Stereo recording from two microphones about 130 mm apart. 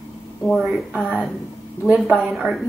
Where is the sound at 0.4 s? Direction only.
Centre (ahead or behind).